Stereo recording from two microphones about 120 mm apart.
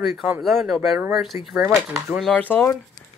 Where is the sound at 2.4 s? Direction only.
15° left (ahead or behind).